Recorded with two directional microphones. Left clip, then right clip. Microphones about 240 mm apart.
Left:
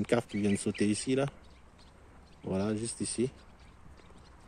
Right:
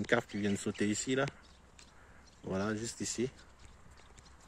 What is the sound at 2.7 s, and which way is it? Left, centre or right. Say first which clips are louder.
Speech: left 3 dB; centre.